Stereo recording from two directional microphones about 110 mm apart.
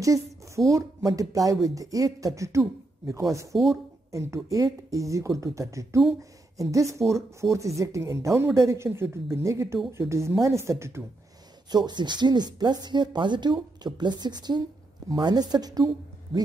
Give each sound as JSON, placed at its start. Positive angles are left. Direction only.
{"t": 0.0, "sound": "a woman's voice", "side_deg": -30}
{"t": 11.7, "sound": "speech", "side_deg": -40}